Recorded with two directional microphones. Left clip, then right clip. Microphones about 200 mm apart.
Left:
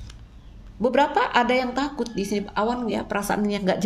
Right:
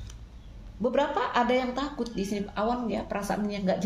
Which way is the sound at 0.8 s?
40° left (ahead or behind).